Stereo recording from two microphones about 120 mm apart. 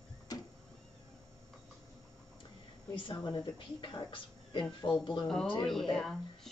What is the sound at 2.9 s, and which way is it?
Speech, 45° left (ahead or behind).